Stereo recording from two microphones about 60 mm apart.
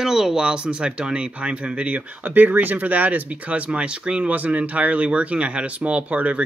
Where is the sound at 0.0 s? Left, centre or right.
Centre.